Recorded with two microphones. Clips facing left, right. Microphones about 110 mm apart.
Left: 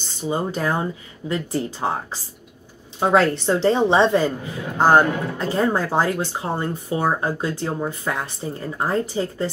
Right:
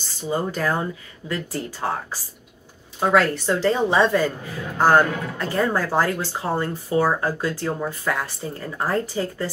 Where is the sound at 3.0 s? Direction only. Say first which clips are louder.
Left 1 dB; 25° left (ahead or behind).